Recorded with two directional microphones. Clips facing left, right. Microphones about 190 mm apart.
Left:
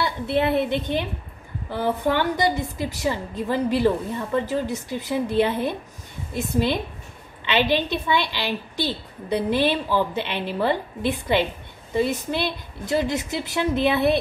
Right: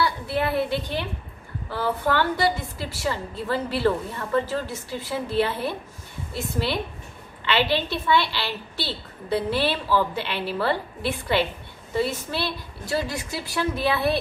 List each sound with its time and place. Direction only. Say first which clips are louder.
0.0 s a woman's voice: left 2 dB; 20° left (ahead or behind)